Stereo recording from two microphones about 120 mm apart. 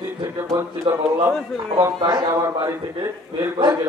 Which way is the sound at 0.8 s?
45° right (ahead or behind).